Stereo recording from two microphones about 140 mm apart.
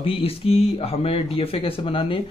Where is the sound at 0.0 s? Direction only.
40° left (ahead or behind).